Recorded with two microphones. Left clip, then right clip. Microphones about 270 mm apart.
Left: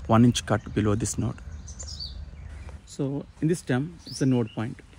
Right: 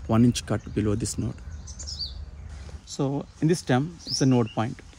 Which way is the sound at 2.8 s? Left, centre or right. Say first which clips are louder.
Right 3 dB; right.